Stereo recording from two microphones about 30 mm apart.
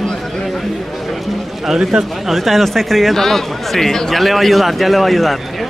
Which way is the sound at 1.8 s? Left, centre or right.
Right.